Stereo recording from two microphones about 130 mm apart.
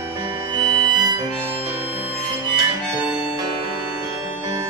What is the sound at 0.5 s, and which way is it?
Music, 30° right (ahead or behind).